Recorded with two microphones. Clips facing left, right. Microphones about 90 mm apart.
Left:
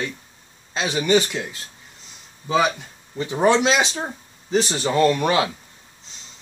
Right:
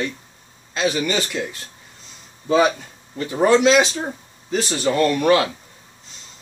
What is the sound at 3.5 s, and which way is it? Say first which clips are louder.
Speech: right 3 dB; 20° left (ahead or behind).